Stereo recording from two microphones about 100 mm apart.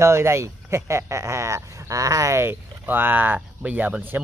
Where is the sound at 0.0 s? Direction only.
25° right (ahead or behind).